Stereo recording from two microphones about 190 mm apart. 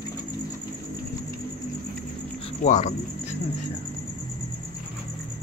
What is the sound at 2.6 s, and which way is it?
Speech, 40° left (ahead or behind).